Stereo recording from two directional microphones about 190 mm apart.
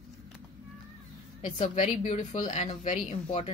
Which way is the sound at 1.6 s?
35° left (ahead or behind).